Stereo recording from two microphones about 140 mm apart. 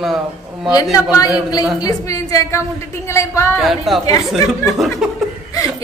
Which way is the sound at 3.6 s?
Centre (ahead or behind).